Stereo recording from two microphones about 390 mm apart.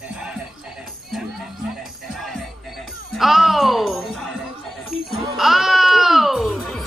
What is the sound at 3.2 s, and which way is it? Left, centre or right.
Music, centre.